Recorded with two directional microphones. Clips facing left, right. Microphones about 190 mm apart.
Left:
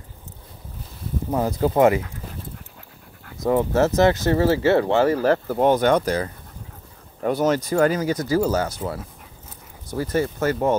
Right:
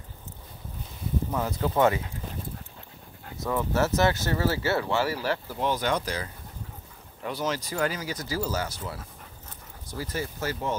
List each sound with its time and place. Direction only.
1.3 s speech: 35° left (ahead or behind)
3.4 s speech: 30° left (ahead or behind); by 10.8 s 55° left (ahead or behind)